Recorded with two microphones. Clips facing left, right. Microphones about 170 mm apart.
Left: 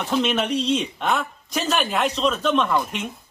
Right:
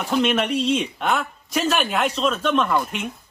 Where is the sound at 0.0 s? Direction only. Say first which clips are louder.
Right 1 dB; centre (ahead or behind).